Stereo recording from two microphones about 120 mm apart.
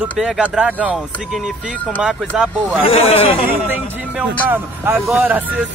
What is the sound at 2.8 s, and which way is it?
Speech, 55° left (ahead or behind).